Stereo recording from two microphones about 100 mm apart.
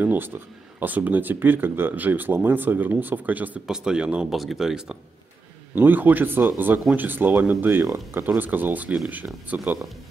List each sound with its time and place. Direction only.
0.0 s speech: 20° right (ahead or behind)
5.8 s speech: 20° right (ahead or behind)
7.8 s speech: 30° right (ahead or behind)
8.4 s speech: 20° right (ahead or behind)